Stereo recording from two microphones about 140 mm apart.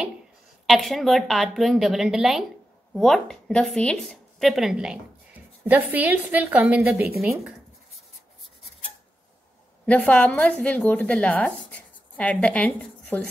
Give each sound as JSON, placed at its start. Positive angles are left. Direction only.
{"t": 0.7, "sound": "a woman's voice", "side_deg": 0}
{"t": 9.8, "sound": "a woman's voice", "side_deg": 10}